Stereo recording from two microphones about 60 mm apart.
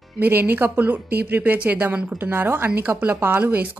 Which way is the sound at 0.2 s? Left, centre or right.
Right.